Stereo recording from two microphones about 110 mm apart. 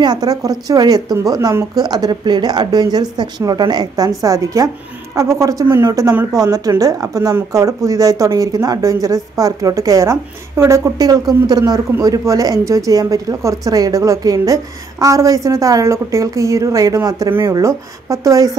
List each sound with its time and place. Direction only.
0.0 s speech: 40° right (ahead or behind)